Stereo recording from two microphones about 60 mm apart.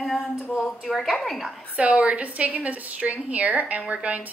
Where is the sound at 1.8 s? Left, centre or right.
Right.